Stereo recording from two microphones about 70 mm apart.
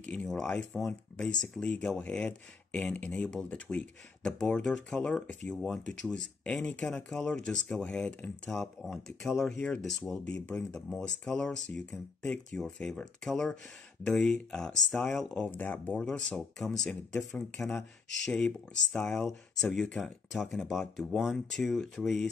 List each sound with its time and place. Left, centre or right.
0.0 s speech: centre
0.7 s speech: centre
9.8 s speech: centre
10.1 s speech: centre
15.4 s speech: left
16.0 s speech: centre
19.0 s speech: centre